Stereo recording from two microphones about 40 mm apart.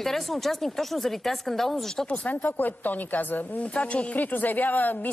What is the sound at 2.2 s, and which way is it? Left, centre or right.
Speech, left.